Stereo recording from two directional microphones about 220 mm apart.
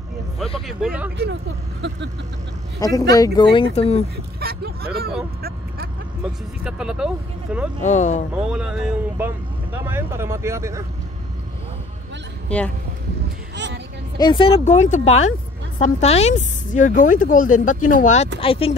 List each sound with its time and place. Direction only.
0.6 s speech: centre (ahead or behind)
2.8 s speech: 15° left (ahead or behind)
4.4 s speech: 45° right (ahead or behind)
6.6 s speech: 5° right (ahead or behind)
7.8 s speech: 35° left (ahead or behind)
8.4 s speech: 5° right (ahead or behind)
12.4 s speech: 5° left (ahead or behind)
14.1 s speech: 20° left (ahead or behind)